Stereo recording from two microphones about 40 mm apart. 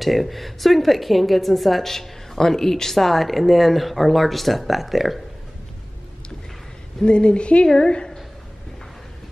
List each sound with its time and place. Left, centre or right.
0.0 s a woman's voice: centre
7.1 s speech: left
7.6 s a woman's voice: centre